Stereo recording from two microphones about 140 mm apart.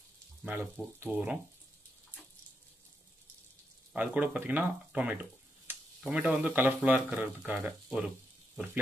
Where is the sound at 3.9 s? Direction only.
10° right (ahead or behind).